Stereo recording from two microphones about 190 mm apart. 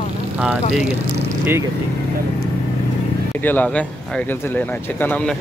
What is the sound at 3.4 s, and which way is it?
Speech, 10° left (ahead or behind).